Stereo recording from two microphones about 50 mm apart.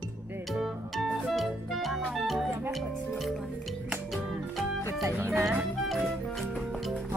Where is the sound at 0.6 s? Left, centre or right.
Centre.